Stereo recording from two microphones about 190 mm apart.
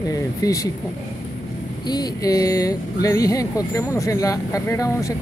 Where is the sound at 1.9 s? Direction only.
20° left (ahead or behind).